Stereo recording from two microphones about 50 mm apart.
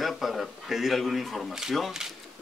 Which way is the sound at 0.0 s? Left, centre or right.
Centre.